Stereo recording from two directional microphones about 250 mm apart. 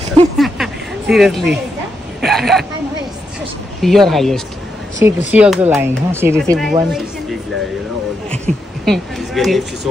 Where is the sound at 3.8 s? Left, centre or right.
Centre.